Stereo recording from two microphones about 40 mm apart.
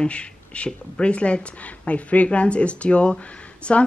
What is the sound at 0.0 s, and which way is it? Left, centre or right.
A woman's voice, left.